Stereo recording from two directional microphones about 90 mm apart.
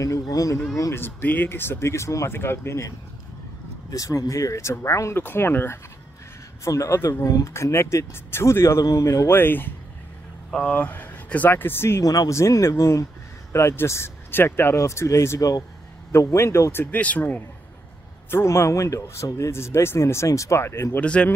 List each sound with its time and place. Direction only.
0.0 s speech: 40° left (ahead or behind)
0.9 s speech: 25° left (ahead or behind)
3.9 s speech: 40° left (ahead or behind)
6.6 s speech: 35° left (ahead or behind)
9.4 s speech: 25° left (ahead or behind)
12.0 s speech: 40° left (ahead or behind)
16.8 s speech: 15° left (ahead or behind)
18.3 s speech: 30° left (ahead or behind)
21.0 s speech: 10° left (ahead or behind)